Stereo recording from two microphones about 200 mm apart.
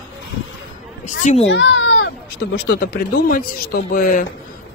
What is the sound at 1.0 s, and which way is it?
Speech, 35° left (ahead or behind).